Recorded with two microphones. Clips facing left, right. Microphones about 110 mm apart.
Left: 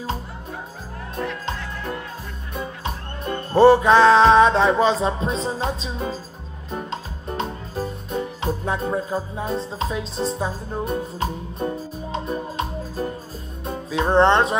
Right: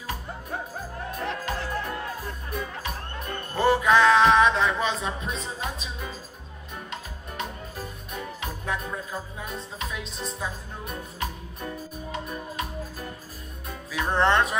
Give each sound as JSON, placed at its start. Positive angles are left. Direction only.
{"t": 2.5, "sound": "music", "side_deg": 25}
{"t": 13.7, "sound": "speech", "side_deg": 25}